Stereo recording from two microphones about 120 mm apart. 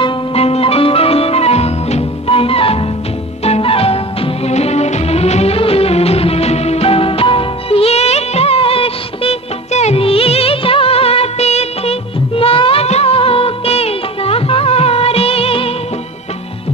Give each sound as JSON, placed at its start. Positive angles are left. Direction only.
{"t": 0.0, "sound": "music", "side_deg": 55}